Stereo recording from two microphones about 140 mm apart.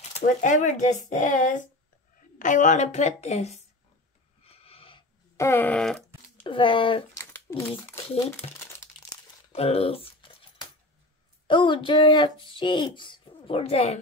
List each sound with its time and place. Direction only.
0.1 s a woman's voice: 60° left (ahead or behind)
4.5 s wheeze: 45° left (ahead or behind)
5.4 s a sound: 15° left (ahead or behind)
6.4 s speech: 35° left (ahead or behind)
7.2 s crumpling: 20° left (ahead or behind)
8.4 s speech: 50° left (ahead or behind)
11.4 s speech: 35° left (ahead or behind)